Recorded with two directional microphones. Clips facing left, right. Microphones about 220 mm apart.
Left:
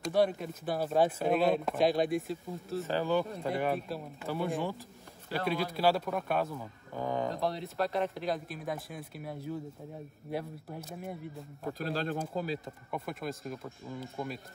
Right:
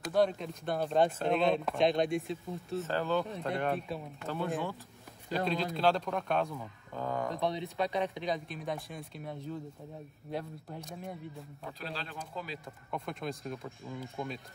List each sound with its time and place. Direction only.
0.1 s speech: 5° left (ahead or behind)
2.9 s a man's voice: 15° left (ahead or behind)
3.3 s a man's voice: centre (ahead or behind)
11.8 s speech: 45° left (ahead or behind)
12.9 s speech: 5° left (ahead or behind)